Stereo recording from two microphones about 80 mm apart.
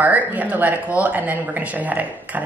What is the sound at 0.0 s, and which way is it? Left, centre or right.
Speech, right.